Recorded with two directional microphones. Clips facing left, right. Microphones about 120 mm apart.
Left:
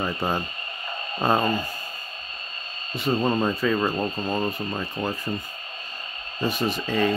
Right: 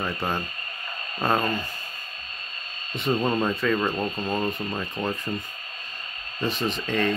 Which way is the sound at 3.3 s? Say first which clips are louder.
Left 1 dB; 5° left (ahead or behind).